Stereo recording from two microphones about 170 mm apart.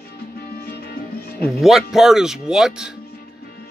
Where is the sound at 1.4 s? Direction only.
Centre (ahead or behind).